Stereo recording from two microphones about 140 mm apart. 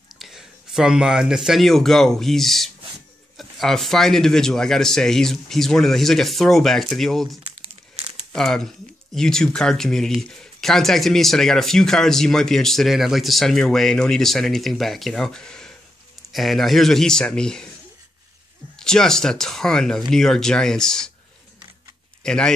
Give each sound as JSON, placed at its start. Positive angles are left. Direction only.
{"t": 0.2, "sound": "speech", "side_deg": -5}
{"t": 18.8, "sound": "speech", "side_deg": 5}
{"t": 22.2, "sound": "speech", "side_deg": 5}